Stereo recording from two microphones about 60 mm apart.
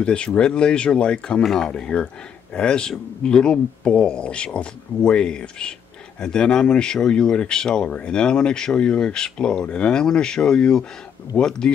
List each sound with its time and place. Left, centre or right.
0.0 s speech: centre